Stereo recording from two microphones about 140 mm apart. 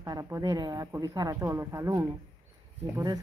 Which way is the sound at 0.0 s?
25° right (ahead or behind).